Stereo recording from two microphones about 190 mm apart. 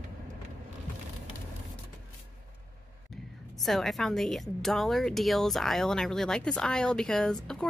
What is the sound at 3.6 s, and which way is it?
A woman's voice, centre (ahead or behind).